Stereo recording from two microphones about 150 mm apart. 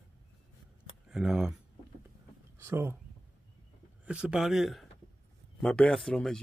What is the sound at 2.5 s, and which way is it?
Speech, 15° right (ahead or behind).